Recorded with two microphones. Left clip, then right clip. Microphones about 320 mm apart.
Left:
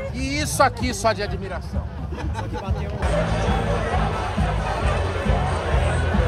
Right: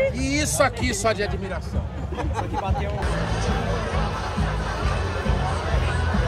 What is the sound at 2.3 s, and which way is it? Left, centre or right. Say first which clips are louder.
Speech: right 4 dB; right.